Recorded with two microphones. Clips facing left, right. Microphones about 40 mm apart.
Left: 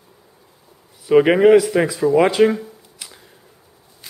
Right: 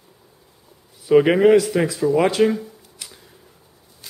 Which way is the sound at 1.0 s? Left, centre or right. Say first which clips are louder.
Left 2 dB; centre.